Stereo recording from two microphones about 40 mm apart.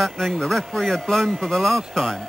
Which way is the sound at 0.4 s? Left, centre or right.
Centre.